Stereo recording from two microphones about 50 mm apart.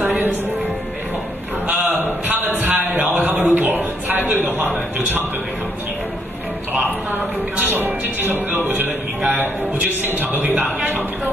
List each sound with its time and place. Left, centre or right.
0.0 s music: right
1.9 s a sound: right
4.9 s a man's voice: right
6.7 s speech: right
7.5 s music: right
9.4 s speech: right